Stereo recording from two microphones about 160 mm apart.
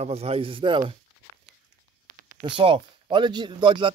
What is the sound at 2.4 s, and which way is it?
Speech, 30° right (ahead or behind).